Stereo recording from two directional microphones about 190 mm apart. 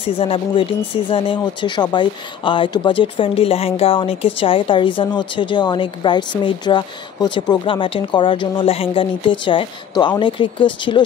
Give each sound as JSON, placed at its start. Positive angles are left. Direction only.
{"t": 0.0, "sound": "speech", "side_deg": 30}